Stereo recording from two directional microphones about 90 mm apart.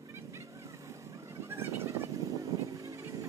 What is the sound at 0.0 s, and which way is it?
Vehicle, 35° right (ahead or behind).